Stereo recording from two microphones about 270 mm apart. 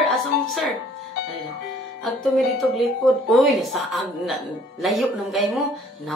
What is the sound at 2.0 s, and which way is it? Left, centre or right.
A woman's voice, centre.